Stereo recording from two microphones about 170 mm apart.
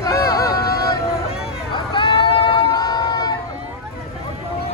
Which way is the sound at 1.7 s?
30° left (ahead or behind).